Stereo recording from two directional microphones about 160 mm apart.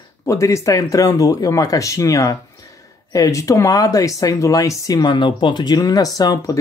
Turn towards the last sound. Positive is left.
turn(degrees=20)  # may be behind; listen again after turning